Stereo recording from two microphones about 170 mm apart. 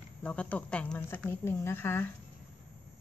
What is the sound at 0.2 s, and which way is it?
A woman's voice, 5° left (ahead or behind).